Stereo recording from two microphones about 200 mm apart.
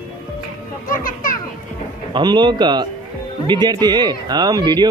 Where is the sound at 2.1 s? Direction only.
20° right (ahead or behind).